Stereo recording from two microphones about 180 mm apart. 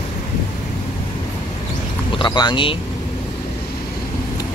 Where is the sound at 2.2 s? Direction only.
25° left (ahead or behind).